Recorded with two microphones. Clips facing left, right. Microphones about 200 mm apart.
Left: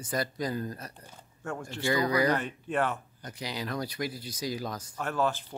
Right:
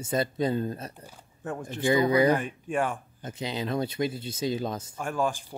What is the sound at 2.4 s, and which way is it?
Speech, 10° right (ahead or behind).